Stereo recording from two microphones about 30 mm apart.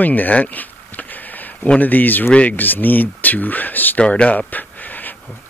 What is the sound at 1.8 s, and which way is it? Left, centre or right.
Speech, left.